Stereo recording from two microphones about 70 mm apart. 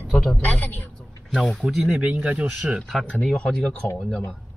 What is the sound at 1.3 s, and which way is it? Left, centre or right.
Speech, centre.